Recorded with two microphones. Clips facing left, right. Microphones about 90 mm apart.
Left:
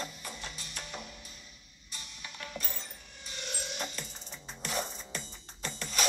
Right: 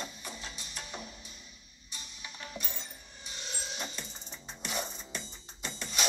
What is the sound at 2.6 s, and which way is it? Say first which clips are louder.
Coin: left 1 dB; centre (ahead or behind).